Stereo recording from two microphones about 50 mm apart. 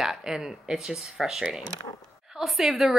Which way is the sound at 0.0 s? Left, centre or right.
Centre.